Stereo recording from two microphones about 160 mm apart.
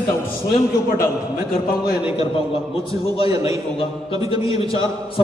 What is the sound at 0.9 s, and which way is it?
A man's voice, 65° left (ahead or behind).